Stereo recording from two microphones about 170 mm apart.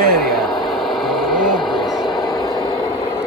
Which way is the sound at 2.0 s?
25° left (ahead or behind).